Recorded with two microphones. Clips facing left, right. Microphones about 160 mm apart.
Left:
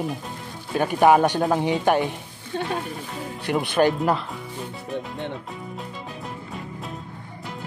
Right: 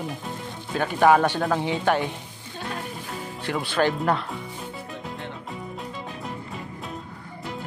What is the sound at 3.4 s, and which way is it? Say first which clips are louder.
Speech: left 4 dB; 15° left (ahead or behind).